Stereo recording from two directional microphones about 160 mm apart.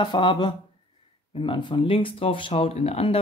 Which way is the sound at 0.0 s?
30° left (ahead or behind).